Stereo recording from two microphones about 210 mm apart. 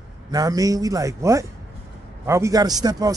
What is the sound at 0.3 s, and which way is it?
Speech, 15° right (ahead or behind).